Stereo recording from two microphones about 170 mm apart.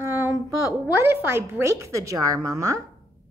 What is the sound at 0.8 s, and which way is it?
A woman's voice, 15° right (ahead or behind).